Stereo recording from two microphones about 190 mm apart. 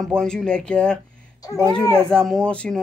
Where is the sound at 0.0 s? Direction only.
5° left (ahead or behind).